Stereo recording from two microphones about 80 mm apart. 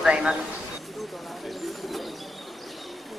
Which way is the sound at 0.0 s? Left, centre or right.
Centre.